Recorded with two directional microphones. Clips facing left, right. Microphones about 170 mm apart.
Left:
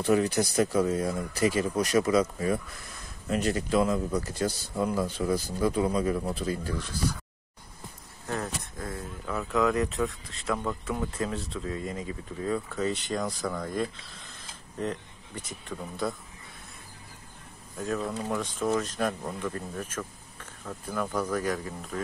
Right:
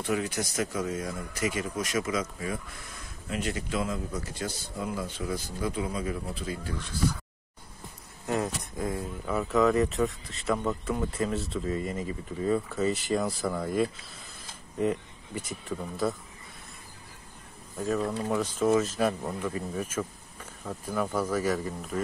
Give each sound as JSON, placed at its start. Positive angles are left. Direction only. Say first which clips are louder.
{"t": 0.0, "sound": "speech", "louder": "left 6 dB", "side_deg": 35}
{"t": 8.3, "sound": "speech", "louder": "right 4 dB", "side_deg": -15}
{"t": 17.7, "sound": "speech", "louder": "right 2 dB", "side_deg": 0}